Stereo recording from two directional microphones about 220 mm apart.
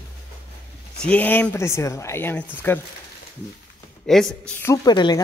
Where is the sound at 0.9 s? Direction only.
5° left (ahead or behind).